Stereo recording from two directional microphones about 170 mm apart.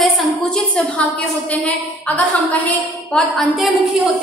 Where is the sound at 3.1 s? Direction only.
Centre (ahead or behind).